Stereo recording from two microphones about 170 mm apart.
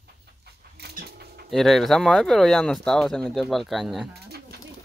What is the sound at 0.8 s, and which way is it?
Mechanisms, 70° right (ahead or behind).